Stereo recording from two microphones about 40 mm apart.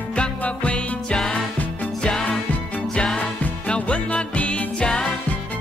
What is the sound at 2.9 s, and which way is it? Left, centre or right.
Music, centre.